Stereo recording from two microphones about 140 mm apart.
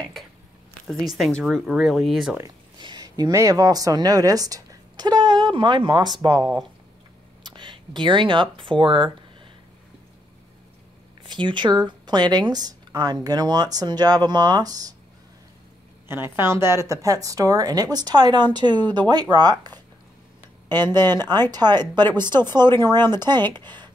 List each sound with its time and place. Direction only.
0.8 s speech: centre (ahead or behind)
2.8 s speech: 30° right (ahead or behind)
7.4 s speech: 35° right (ahead or behind)
11.2 s speech: 35° right (ahead or behind)
16.1 s speech: 15° right (ahead or behind)
20.8 s speech: 30° right (ahead or behind)